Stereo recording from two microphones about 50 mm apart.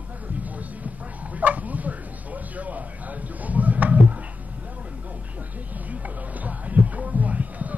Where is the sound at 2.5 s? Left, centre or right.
Right.